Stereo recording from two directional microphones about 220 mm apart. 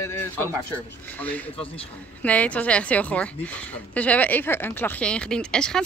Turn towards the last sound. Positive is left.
turn(degrees=5)  # may be behind; listen again after turning